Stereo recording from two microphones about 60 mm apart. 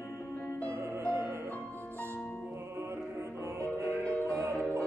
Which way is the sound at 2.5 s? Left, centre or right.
Right.